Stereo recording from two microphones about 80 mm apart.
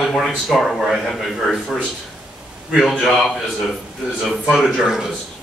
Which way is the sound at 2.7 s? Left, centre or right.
Centre.